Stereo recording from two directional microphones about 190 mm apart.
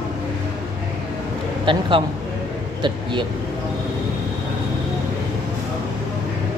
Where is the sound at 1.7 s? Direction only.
25° right (ahead or behind).